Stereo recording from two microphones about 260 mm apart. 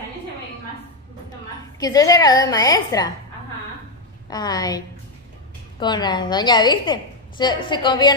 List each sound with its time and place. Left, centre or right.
1.8 s a woman's voice: centre
4.3 s a woman's voice: centre